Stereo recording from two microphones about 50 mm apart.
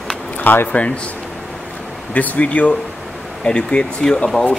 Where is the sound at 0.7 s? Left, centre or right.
Left.